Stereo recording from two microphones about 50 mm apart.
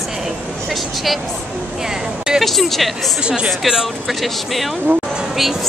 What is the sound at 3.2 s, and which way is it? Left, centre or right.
A woman's voice, centre.